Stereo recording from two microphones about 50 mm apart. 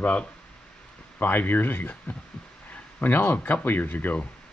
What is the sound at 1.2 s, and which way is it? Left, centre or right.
Speech, left.